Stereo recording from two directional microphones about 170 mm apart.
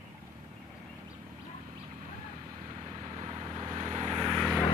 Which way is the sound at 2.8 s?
35° right (ahead or behind).